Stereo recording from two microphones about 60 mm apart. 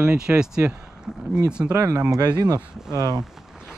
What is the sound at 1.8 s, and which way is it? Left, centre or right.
Speech, right.